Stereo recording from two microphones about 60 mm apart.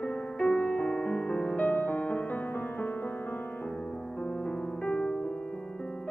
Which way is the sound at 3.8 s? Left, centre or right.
Centre.